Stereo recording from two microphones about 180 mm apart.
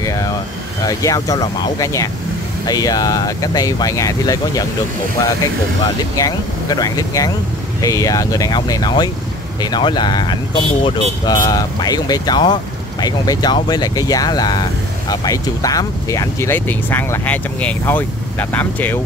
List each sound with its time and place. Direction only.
0.0 s vehicle: 20° left (ahead or behind)
0.8 s speech: 20° left (ahead or behind)
6.1 s speech: 20° left (ahead or behind)